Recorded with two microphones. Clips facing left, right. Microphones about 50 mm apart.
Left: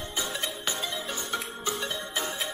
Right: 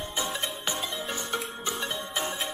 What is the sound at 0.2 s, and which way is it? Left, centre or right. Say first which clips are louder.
Music: right 1 dB; right.